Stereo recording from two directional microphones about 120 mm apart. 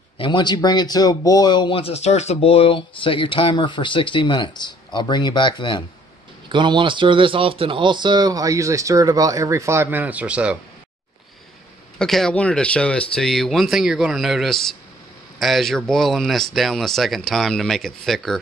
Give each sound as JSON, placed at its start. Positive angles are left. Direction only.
{"t": 0.2, "sound": "speech", "side_deg": 40}
{"t": 6.5, "sound": "speech", "side_deg": -40}
{"t": 12.0, "sound": "speech", "side_deg": 5}